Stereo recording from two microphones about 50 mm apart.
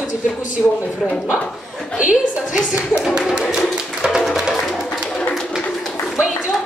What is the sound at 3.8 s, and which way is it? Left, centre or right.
Music, centre.